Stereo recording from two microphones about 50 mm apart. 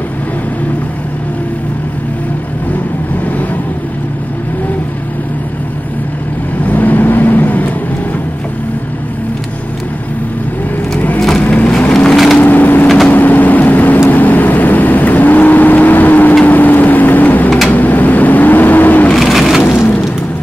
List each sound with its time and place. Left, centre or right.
6.6 s vehicle: left
11.1 s vehicle: centre
11.4 s vehicle: left
11.9 s wood: centre
12.4 s splinter: left
12.8 s vehicle: centre
13.1 s vehicle: left
19.1 s crushing: centre